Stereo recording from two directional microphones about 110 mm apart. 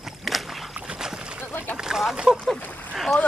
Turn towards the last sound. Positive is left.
turn(degrees=0)  # may be behind; listen again after turning